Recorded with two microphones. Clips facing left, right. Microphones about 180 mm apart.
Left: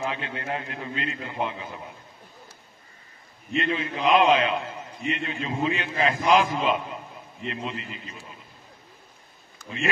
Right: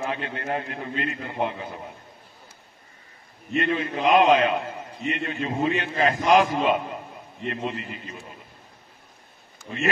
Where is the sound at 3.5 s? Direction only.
45° right (ahead or behind).